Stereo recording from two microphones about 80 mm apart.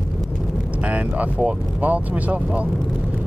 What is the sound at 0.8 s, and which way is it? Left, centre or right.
Speech, centre.